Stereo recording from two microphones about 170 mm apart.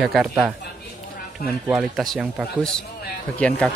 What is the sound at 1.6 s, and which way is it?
Speech, 5° right (ahead or behind).